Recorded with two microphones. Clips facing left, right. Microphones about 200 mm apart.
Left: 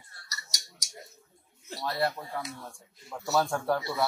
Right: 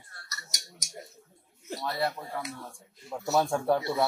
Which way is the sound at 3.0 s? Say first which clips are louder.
Right 1 dB; 20° right (ahead or behind).